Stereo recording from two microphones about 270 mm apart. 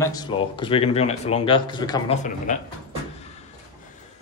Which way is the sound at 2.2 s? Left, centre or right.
Left.